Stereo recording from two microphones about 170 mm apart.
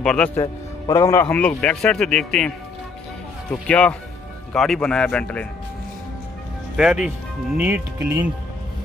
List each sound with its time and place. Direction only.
0.0 s a man's voice: 5° left (ahead or behind)
0.4 s speech: 20° left (ahead or behind)
1.6 s a man's voice: 5° left (ahead or behind)
6.8 s a man's voice: 5° right (ahead or behind)